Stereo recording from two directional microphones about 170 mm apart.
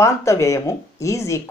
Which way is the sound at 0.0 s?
15° left (ahead or behind).